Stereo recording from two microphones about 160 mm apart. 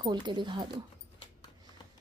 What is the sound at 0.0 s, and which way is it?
Speech, 25° right (ahead or behind).